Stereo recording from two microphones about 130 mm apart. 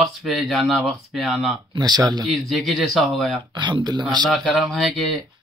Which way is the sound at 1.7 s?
30° right (ahead or behind).